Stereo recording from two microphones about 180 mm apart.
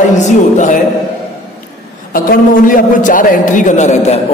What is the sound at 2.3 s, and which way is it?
A man's voice, 50° left (ahead or behind).